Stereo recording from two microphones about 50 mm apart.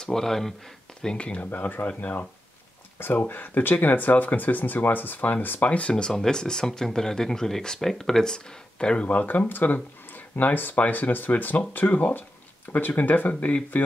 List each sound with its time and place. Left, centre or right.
0.0 s speech: centre
1.0 s speech: left
1.5 s speech: left
1.9 s speech: left
3.2 s speech: left
5.7 s speech: left
9.0 s speech: left
13.3 s speech: left